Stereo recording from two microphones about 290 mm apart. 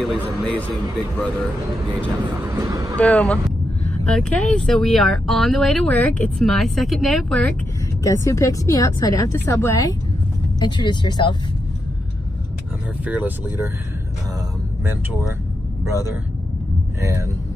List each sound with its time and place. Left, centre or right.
0.0 s speech: centre
2.4 s speech: centre
3.0 s speech: centre
13.0 s speech: centre
15.8 s speech: centre